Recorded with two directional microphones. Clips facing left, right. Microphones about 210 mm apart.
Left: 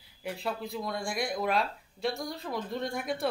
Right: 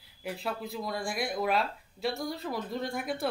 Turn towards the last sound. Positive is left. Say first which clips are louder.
# even
turn(degrees=0)  # may be behind; listen again after turning